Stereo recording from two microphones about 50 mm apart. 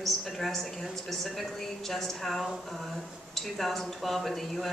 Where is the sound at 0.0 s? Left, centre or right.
Centre.